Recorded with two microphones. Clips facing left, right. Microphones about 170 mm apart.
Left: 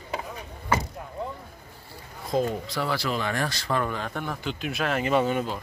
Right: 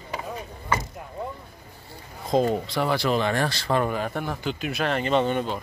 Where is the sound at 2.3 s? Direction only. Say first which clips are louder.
Right 4 dB; 20° right (ahead or behind).